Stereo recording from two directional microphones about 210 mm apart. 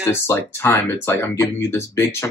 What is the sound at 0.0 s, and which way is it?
Speech, 15° left (ahead or behind).